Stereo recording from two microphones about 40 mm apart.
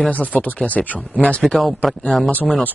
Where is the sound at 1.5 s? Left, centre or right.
Centre.